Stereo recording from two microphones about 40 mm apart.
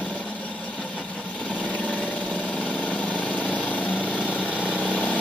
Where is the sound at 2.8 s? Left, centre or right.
Left.